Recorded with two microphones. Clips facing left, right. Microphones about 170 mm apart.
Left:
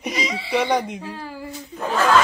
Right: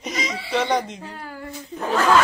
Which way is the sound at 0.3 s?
Centre (ahead or behind).